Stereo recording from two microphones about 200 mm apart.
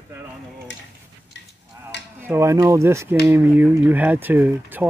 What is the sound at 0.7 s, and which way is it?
Speech, 65° left (ahead or behind).